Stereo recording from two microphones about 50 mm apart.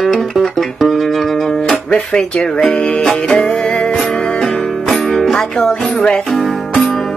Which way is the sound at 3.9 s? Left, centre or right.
Centre.